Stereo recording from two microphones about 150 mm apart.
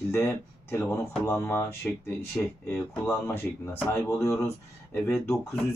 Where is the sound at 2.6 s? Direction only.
15° left (ahead or behind).